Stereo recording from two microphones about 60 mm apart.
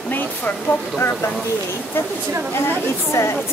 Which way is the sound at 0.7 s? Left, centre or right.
Left.